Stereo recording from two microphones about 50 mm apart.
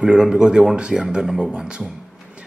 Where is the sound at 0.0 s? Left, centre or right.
Centre.